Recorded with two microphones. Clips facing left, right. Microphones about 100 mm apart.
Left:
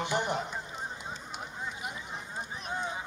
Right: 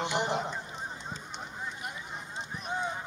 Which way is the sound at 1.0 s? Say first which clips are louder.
Even; 5° left (ahead or behind).